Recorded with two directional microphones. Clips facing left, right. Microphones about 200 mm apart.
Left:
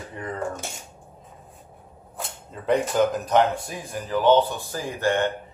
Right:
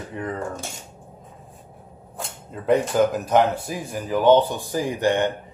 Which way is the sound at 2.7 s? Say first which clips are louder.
Right 2 dB; 10° right (ahead or behind).